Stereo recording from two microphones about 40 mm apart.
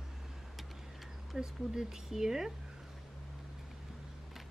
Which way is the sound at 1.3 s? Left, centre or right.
Centre.